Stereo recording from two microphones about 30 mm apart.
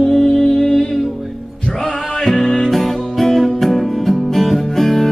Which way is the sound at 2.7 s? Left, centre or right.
Centre.